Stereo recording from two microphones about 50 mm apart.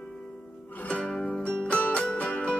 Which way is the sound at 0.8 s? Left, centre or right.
Left.